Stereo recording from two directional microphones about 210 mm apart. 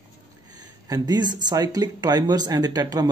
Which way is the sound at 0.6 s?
20° right (ahead or behind).